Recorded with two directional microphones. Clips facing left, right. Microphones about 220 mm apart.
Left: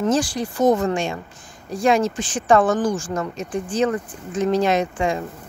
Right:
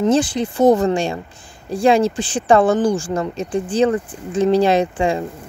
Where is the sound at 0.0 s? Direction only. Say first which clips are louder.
Right 4 dB; 20° right (ahead or behind).